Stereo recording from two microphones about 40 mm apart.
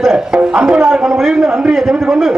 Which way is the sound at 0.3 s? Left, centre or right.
Right.